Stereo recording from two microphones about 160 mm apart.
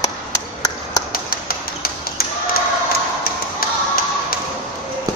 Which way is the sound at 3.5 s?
65° left (ahead or behind).